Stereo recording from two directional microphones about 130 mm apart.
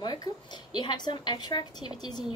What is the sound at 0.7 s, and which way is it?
A woman's voice, 35° left (ahead or behind).